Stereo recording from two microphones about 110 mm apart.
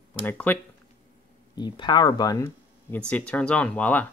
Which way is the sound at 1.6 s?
45° left (ahead or behind).